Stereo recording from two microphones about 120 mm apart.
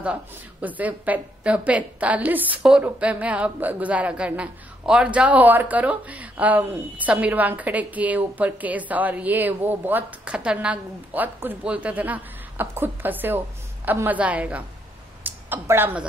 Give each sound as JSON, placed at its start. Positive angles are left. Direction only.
{"t": 0.0, "sound": "a woman's voice", "side_deg": -10}